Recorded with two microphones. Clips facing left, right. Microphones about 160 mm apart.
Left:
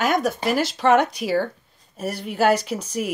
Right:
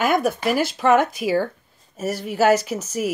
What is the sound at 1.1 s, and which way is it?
Speech, 50° right (ahead or behind).